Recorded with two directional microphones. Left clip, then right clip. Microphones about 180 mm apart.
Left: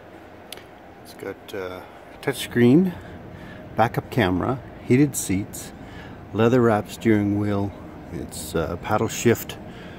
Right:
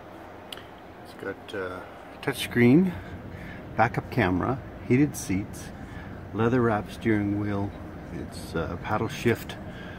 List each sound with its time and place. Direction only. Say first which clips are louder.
1.2 s speech: left 2 dB; 15° left (ahead or behind)
6.3 s speech: left 6 dB; 30° left (ahead or behind)